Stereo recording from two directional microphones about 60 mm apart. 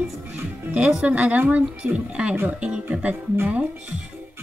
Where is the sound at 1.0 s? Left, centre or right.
Right.